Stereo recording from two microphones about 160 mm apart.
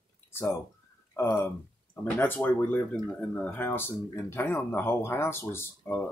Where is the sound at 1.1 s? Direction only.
15° left (ahead or behind).